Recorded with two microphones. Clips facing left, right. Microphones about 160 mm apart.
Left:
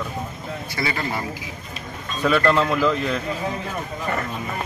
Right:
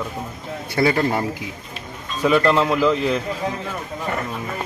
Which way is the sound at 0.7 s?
50° right (ahead or behind).